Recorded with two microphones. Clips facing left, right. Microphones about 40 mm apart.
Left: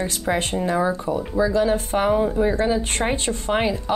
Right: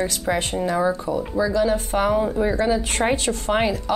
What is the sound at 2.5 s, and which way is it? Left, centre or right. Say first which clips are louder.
Speech: even; centre.